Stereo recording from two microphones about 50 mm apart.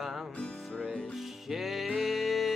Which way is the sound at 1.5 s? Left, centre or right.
Centre.